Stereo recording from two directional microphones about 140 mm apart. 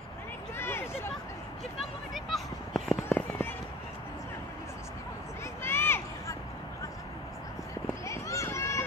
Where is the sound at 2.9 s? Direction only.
15° left (ahead or behind).